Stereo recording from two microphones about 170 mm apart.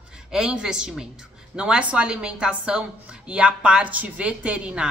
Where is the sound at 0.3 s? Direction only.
5° right (ahead or behind).